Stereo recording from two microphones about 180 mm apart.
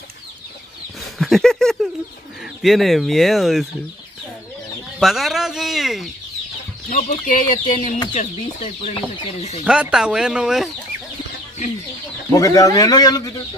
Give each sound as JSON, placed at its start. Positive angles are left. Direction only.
{"t": 1.1, "sound": "a sound", "side_deg": 0}
{"t": 2.6, "sound": "speech", "side_deg": 0}
{"t": 5.0, "sound": "speech", "side_deg": 0}
{"t": 6.9, "sound": "chicken", "side_deg": 45}
{"t": 8.2, "sound": "speech", "side_deg": 40}
{"t": 9.7, "sound": "speech", "side_deg": -5}
{"t": 12.3, "sound": "speech", "side_deg": 20}